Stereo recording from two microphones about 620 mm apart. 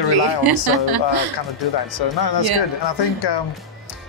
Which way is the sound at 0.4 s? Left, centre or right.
Right.